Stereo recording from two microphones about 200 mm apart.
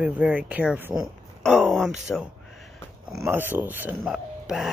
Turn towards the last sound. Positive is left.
turn(degrees=-5)  # may be behind; listen again after turning